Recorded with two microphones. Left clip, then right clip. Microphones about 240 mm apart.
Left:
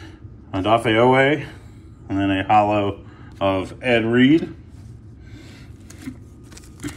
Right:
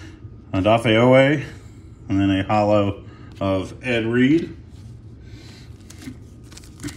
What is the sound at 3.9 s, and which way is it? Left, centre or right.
Speech, centre.